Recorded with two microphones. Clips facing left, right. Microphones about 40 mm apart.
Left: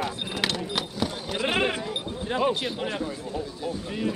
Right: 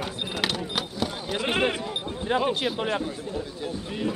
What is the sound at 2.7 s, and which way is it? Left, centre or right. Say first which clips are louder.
Speech: right 2 dB; right.